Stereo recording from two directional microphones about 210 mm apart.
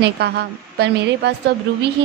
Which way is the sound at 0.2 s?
50° right (ahead or behind).